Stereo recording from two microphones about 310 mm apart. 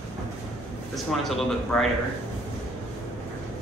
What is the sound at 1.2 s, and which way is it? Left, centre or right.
Speech, centre.